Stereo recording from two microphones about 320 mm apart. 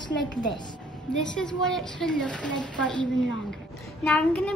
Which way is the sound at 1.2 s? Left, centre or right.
Centre.